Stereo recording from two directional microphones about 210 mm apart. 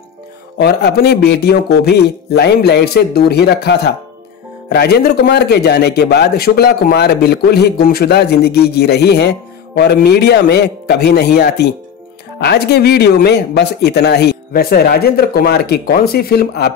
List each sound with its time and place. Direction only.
0.6 s a man's voice: 50° left (ahead or behind)